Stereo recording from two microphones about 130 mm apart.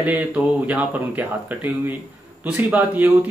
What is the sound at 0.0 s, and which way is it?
Speech, 10° right (ahead or behind).